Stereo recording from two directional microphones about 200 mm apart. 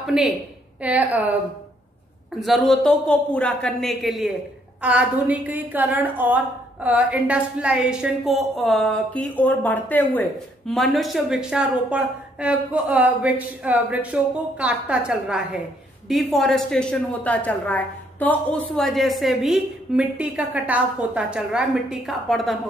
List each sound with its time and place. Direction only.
0.0 s a woman's voice: 5° right (ahead or behind)
2.4 s a woman's voice: centre (ahead or behind)